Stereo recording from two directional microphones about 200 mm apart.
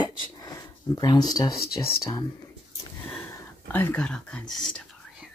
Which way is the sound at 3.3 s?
10° left (ahead or behind).